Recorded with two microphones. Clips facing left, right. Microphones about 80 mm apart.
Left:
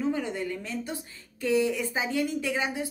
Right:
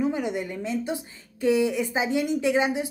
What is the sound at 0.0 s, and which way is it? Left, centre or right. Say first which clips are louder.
A woman's voice: right 3 dB; centre.